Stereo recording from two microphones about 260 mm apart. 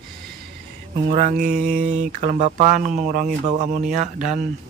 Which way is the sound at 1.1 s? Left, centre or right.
Right.